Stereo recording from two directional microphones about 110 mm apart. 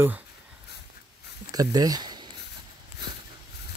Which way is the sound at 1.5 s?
35° right (ahead or behind).